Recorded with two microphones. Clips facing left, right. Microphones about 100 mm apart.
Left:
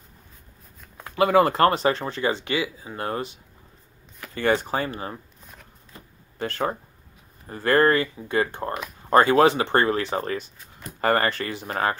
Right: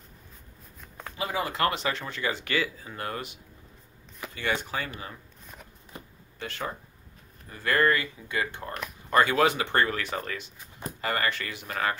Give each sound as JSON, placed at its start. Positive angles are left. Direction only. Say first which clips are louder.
{"t": 1.1, "sound": "speech", "louder": "left 13 dB", "side_deg": 65}
{"t": 1.5, "sound": "speech", "louder": "left 8 dB", "side_deg": 40}
{"t": 2.5, "sound": "speech", "louder": "left 3 dB", "side_deg": 20}
{"t": 4.5, "sound": "speech", "louder": "left 8 dB", "side_deg": 35}
{"t": 6.3, "sound": "speech", "louder": "left 8 dB", "side_deg": 40}